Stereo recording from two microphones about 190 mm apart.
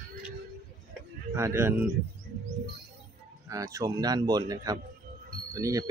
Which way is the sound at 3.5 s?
15° right (ahead or behind).